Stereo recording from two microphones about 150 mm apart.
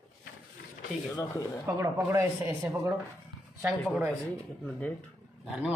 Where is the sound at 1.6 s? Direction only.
20° right (ahead or behind).